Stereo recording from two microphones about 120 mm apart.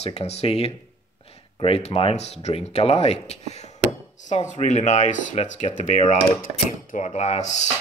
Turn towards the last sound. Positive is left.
turn(degrees=75)  # may be behind; listen again after turning